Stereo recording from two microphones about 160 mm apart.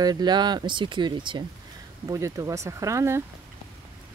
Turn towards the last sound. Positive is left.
turn(degrees=-20)  # may be behind; listen again after turning